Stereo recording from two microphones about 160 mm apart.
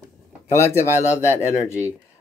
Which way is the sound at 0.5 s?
15° left (ahead or behind).